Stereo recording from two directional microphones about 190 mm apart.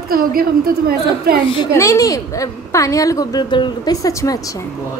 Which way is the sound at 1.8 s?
15° left (ahead or behind).